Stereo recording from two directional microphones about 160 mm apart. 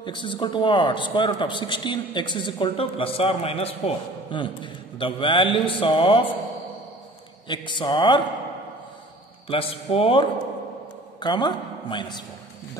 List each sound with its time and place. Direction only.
0.0 s a man's voice: 30° left (ahead or behind)
7.4 s a man's voice: 30° left (ahead or behind)
9.5 s a man's voice: 35° left (ahead or behind)